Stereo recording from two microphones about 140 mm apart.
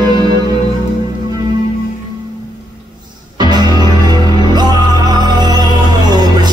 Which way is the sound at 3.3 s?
30° right (ahead or behind).